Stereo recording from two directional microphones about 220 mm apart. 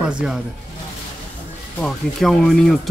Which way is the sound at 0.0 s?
5° right (ahead or behind).